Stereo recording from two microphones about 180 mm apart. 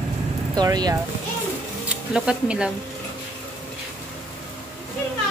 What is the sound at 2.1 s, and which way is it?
Speech, 5° right (ahead or behind).